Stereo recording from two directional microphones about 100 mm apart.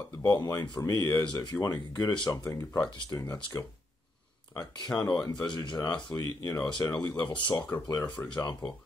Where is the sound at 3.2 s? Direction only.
30° left (ahead or behind).